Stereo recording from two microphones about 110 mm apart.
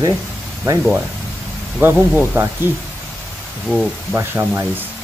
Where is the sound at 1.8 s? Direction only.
20° right (ahead or behind).